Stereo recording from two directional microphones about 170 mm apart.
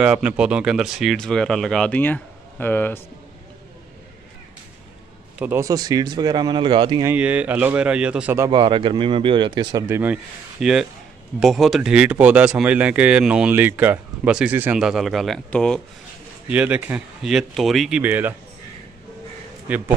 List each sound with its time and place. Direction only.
0.0 s speech: 5° right (ahead or behind); by 3.0 s 10° left (ahead or behind)
5.4 s speech: 15° right (ahead or behind)
7.1 s speech: 10° right (ahead or behind)
8.5 s speech: 30° right (ahead or behind)
9.8 s speech: 10° right (ahead or behind); by 15.8 s 5° left (ahead or behind)
16.4 s speech: 5° right (ahead or behind)
19.7 s speech: 10° right (ahead or behind)